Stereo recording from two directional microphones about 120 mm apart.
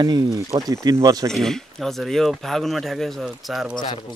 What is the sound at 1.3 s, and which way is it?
Speech, 5° left (ahead or behind).